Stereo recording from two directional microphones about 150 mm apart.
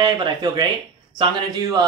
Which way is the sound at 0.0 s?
30° right (ahead or behind).